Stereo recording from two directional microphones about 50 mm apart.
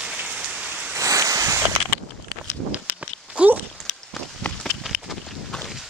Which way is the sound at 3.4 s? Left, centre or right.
Right.